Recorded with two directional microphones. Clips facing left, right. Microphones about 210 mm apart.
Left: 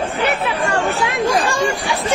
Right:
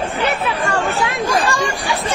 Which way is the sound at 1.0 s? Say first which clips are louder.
Left 1 dB; 15° left (ahead or behind).